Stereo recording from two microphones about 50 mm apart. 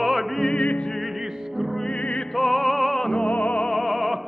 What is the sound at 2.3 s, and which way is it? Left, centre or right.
Music, centre.